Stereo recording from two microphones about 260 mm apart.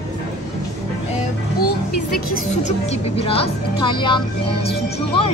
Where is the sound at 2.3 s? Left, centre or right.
Left.